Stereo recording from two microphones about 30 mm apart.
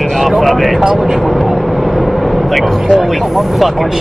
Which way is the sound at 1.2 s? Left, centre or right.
Centre.